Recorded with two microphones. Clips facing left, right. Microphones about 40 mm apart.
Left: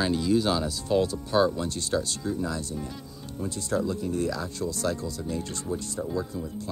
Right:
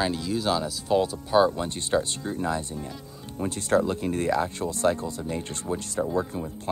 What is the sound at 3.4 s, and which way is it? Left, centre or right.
Speech, right.